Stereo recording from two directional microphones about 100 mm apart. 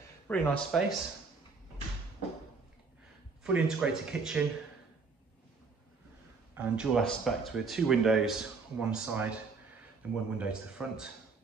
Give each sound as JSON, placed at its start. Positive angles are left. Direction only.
{"t": 0.3, "sound": "speech", "side_deg": 15}
{"t": 0.7, "sound": "speech", "side_deg": 0}
{"t": 3.4, "sound": "speech", "side_deg": -10}
{"t": 6.5, "sound": "a man's voice", "side_deg": -15}
{"t": 7.0, "sound": "speech", "side_deg": 0}
{"t": 10.3, "sound": "speech", "side_deg": -10}